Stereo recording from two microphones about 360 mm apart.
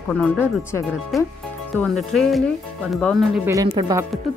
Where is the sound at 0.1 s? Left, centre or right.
Centre.